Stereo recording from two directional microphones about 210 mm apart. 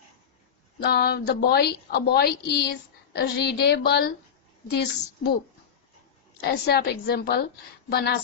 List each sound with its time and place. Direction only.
0.7 s a woman's voice: 50° left (ahead or behind)
6.4 s a woman's voice: 45° left (ahead or behind)